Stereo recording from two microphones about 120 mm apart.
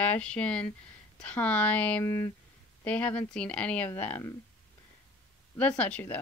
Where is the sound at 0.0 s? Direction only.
10° left (ahead or behind).